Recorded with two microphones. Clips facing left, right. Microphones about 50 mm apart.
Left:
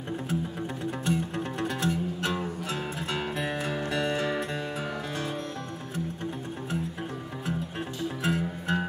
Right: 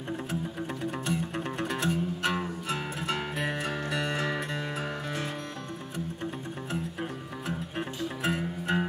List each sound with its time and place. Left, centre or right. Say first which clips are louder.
1.3 s music: left 1 dB; right
8.2 s music: left 1 dB; right